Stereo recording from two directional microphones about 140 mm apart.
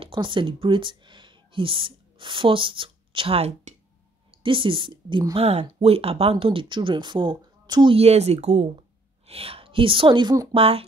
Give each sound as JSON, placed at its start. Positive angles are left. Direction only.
{"t": 0.0, "sound": "a woman's voice", "side_deg": -35}